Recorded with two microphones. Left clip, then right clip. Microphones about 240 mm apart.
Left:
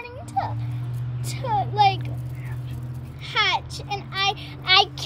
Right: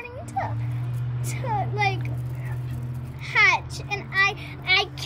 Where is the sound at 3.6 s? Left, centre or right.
Centre.